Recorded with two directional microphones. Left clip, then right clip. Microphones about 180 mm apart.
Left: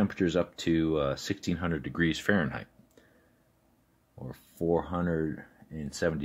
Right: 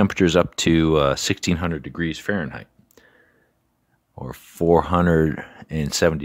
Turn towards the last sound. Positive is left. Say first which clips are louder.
# right 11 dB
turn(degrees=-50)  # may be behind; listen again after turning